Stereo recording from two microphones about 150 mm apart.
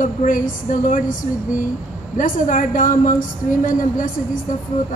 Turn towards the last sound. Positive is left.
turn(degrees=60)  # may be behind; listen again after turning